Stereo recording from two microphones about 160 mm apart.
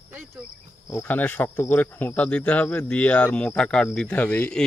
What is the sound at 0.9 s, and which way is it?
Speech, 10° left (ahead or behind).